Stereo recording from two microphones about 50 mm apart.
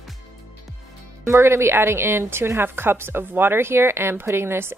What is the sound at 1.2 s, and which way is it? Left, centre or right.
A woman's voice, right.